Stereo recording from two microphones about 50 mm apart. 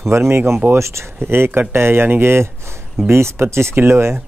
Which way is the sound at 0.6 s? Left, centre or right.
Right.